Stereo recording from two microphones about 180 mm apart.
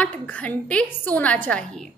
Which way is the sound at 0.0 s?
10° left (ahead or behind).